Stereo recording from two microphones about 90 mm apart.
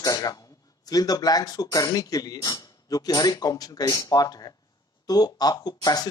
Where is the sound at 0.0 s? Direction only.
45° left (ahead or behind).